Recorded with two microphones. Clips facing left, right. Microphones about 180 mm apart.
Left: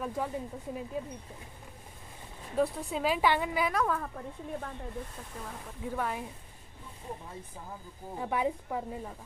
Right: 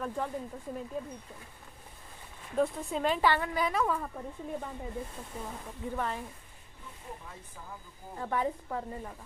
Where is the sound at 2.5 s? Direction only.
Centre (ahead or behind).